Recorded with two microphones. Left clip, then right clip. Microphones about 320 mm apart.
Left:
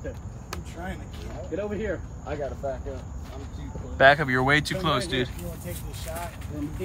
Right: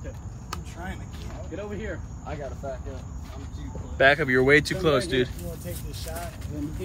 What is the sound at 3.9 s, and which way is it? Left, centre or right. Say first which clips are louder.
Speech: left 1 dB; centre.